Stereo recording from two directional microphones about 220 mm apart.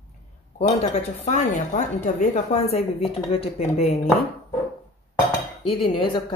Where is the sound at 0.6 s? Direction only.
30° left (ahead or behind).